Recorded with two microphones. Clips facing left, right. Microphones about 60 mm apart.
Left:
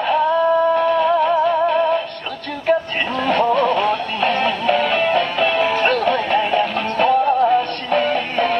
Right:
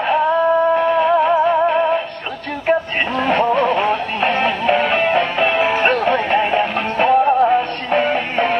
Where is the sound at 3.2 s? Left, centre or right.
Right.